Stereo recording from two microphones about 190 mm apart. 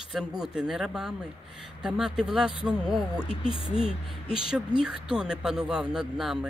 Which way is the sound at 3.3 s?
30° left (ahead or behind).